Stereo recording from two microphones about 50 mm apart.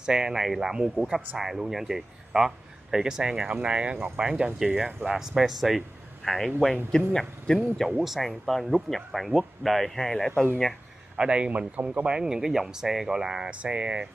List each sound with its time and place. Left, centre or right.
0.0 s speech: centre
7.8 s speech: centre
11.1 s speech: centre
12.2 s speech: centre
13.5 s speech: right